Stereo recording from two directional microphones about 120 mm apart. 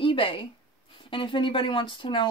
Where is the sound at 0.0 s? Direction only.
45° left (ahead or behind).